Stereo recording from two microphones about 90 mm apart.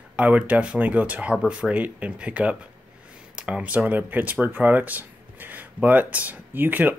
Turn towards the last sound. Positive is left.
turn(degrees=-20)  # may be behind; listen again after turning